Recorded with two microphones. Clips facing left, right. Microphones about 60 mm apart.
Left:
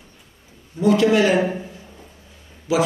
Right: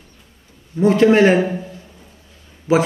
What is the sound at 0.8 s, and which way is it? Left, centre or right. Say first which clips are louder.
Speech: right 4 dB; right.